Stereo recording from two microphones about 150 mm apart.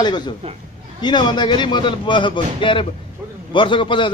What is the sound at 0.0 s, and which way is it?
Speech, 30° left (ahead or behind).